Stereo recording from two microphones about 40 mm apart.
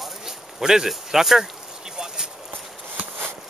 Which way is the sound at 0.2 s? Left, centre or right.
Centre.